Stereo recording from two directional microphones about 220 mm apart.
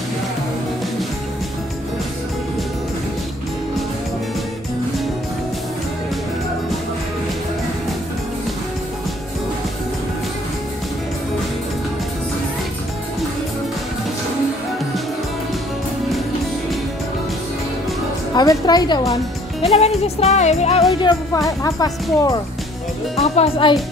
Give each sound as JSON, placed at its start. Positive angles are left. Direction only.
{"t": 18.3, "sound": "a woman's voice", "side_deg": 20}
{"t": 19.7, "sound": "music", "side_deg": 30}
{"t": 21.0, "sound": "speech", "side_deg": 15}
{"t": 23.1, "sound": "music", "side_deg": 30}